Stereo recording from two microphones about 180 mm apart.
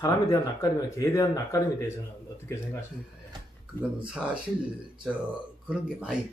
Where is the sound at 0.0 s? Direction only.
20° left (ahead or behind).